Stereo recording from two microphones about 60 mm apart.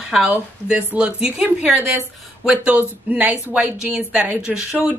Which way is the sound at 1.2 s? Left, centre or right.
Centre.